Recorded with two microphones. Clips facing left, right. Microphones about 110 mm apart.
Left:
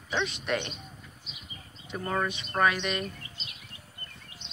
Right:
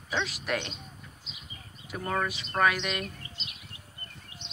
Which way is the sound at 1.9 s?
Centre (ahead or behind).